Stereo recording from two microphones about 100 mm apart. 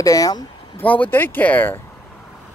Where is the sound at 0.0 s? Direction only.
35° left (ahead or behind).